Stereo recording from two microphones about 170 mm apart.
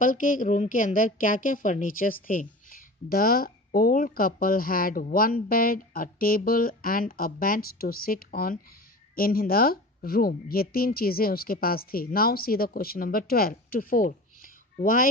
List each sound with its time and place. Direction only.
0.0 s a woman's voice: 50° left (ahead or behind)